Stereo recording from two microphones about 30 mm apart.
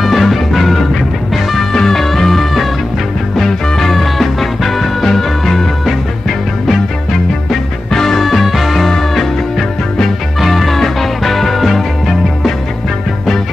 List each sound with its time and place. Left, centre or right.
0.0 s music: centre
1.7 s music: centre
7.9 s music: centre
8.2 s music: centre